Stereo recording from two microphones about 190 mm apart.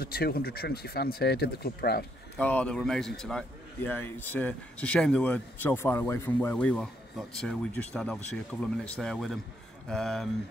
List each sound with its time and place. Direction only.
0.0 s speech: 55° left (ahead or behind)
2.3 s a man's voice: 5° left (ahead or behind)